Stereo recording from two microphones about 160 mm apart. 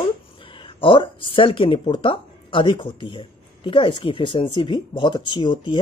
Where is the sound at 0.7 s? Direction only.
30° left (ahead or behind).